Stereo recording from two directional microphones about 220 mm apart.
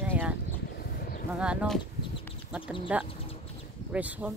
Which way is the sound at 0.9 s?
40° left (ahead or behind).